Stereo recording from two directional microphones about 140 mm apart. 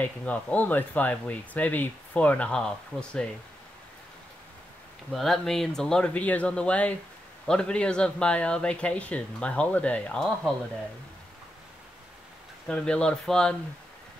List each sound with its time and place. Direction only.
0.0 s speech: 10° left (ahead or behind)
5.1 s speech: centre (ahead or behind)
12.6 s speech: 5° left (ahead or behind)